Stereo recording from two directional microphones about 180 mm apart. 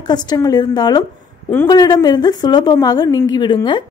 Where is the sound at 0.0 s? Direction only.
25° left (ahead or behind).